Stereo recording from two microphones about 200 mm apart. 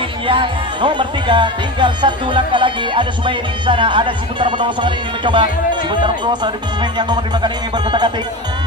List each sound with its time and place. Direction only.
0.3 s speech: 25° right (ahead or behind)